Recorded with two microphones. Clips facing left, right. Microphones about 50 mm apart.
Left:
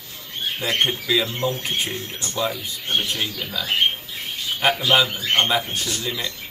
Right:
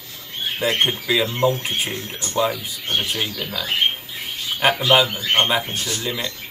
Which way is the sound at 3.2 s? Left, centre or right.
Centre.